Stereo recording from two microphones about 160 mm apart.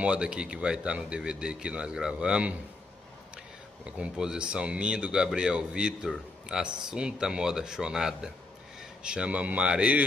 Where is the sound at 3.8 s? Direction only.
5° right (ahead or behind).